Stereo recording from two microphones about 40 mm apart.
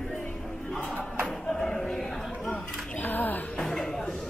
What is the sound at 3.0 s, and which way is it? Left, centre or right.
Music, left.